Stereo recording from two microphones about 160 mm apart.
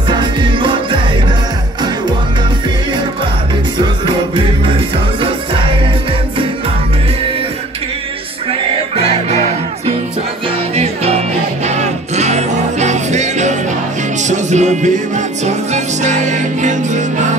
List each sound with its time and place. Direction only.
0.1 s music: 30° right (ahead or behind)
3.7 s music: 30° right (ahead or behind)
10.8 s music: 40° right (ahead or behind)